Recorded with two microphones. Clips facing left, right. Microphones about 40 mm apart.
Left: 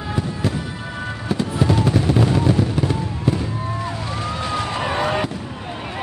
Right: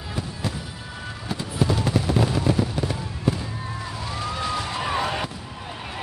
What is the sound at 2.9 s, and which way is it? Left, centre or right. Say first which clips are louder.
Fireworks: left 5 dB; centre.